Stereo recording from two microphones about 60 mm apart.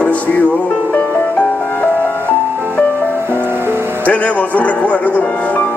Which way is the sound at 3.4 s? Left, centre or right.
Right.